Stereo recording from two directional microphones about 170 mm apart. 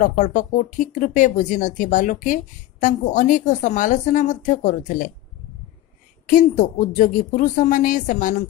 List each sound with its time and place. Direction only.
0.0 s speech: 50° left (ahead or behind)
6.2 s speech: 50° left (ahead or behind)